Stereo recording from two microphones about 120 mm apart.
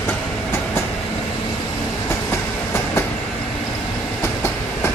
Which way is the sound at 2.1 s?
20° left (ahead or behind).